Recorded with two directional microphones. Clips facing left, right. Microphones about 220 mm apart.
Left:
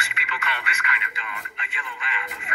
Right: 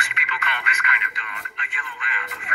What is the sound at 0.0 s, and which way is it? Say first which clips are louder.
Radio: right 1 dB; 30° left (ahead or behind).